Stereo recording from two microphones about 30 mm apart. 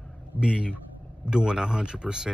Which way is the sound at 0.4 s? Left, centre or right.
Right.